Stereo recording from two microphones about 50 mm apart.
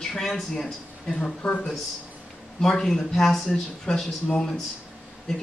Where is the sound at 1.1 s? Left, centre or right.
Left.